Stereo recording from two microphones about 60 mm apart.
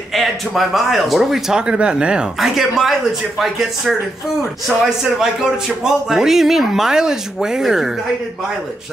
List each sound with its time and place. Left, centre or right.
0.1 s a man's voice: centre
1.7 s speech: centre
2.4 s a man's voice: centre